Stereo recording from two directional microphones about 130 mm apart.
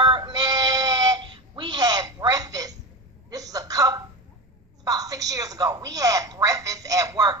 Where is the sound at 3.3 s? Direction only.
30° right (ahead or behind).